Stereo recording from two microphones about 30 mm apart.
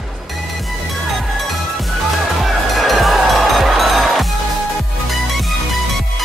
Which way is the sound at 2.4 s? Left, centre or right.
Centre.